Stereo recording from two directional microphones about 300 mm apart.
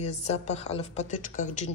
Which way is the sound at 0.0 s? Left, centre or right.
Left.